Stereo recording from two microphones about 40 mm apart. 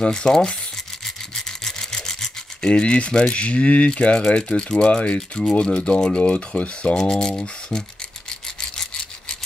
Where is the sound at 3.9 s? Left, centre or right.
Left.